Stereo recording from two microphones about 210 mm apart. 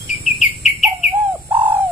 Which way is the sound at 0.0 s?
35° left (ahead or behind).